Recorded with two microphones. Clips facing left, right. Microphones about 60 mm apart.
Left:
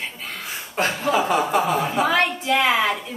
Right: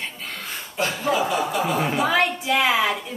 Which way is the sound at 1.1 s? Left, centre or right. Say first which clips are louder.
Left 5 dB; left.